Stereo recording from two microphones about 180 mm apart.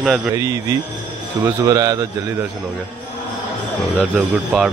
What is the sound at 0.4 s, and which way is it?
A man's voice, 20° right (ahead or behind).